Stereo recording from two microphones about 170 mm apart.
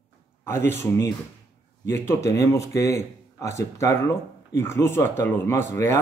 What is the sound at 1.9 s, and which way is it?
Speech, 15° left (ahead or behind).